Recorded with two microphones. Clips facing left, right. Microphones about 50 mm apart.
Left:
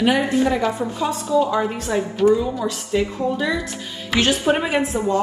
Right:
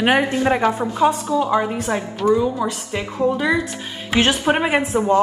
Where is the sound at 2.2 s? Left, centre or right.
Centre.